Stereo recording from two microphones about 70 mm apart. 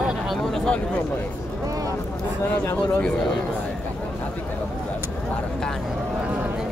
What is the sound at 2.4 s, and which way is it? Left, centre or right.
Speech, left.